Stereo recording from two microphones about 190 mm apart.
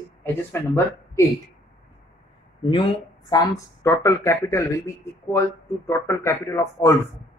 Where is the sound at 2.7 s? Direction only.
25° left (ahead or behind).